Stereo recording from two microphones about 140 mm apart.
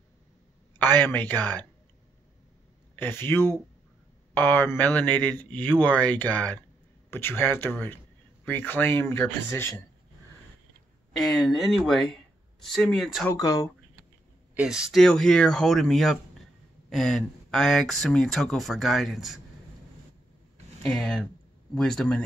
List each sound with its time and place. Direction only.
0.7 s speech: 15° left (ahead or behind)
3.0 s a man's voice: 15° left (ahead or behind)
11.1 s speech: centre (ahead or behind)
13.3 s speech: 25° left (ahead or behind)
14.5 s speech: 5° right (ahead or behind)
20.8 s speech: 5° left (ahead or behind)